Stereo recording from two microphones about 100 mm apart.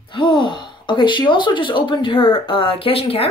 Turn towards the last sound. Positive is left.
turn(degrees=75)  # may be behind; listen again after turning